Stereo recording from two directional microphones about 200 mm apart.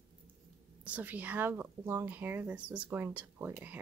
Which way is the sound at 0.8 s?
10° right (ahead or behind).